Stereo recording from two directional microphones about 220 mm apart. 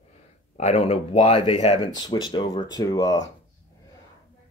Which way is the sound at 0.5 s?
30° left (ahead or behind).